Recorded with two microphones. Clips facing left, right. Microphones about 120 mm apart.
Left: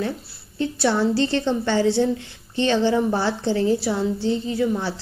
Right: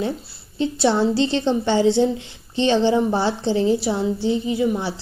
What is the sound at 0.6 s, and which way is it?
A woman's voice, 20° right (ahead or behind).